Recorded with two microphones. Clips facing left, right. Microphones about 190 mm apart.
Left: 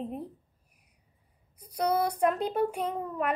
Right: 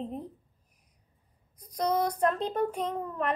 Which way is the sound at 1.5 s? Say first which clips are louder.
Left 1 dB; 10° left (ahead or behind).